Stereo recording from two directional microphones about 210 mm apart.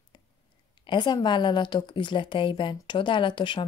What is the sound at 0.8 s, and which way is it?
A woman's voice, 20° left (ahead or behind).